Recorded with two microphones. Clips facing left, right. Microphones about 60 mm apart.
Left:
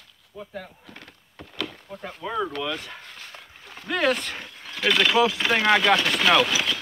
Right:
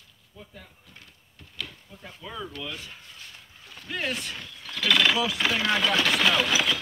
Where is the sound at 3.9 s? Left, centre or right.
Left.